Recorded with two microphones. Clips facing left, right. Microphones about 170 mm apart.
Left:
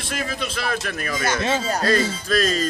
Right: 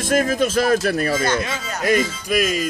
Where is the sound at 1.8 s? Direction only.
15° right (ahead or behind).